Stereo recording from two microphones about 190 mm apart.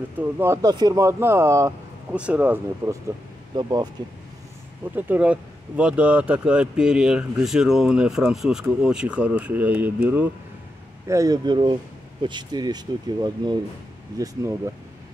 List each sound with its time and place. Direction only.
0.2 s speech: 15° right (ahead or behind)
3.5 s speech: 20° right (ahead or behind)
4.9 s speech: 10° right (ahead or behind)